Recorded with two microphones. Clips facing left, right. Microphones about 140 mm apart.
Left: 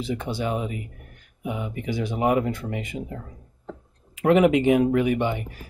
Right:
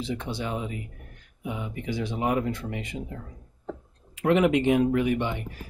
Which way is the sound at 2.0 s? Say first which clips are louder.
Left 4 dB; 60° left (ahead or behind).